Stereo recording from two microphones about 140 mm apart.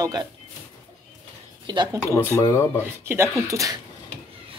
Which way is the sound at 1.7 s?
35° right (ahead or behind).